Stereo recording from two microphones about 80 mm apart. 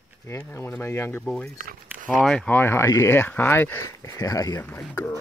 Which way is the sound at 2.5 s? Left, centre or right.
Left.